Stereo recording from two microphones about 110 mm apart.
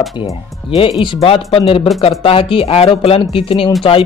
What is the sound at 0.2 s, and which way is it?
Speech, 50° left (ahead or behind).